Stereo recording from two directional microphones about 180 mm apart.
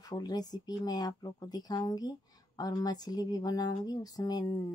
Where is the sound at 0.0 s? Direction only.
25° left (ahead or behind).